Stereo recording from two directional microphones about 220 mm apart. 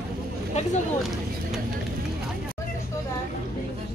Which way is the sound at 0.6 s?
30° left (ahead or behind).